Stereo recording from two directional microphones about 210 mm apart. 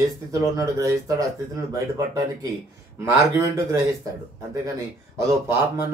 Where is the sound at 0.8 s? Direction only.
15° right (ahead or behind).